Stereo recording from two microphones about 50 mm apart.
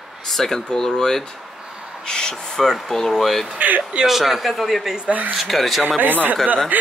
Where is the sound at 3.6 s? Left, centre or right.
Right.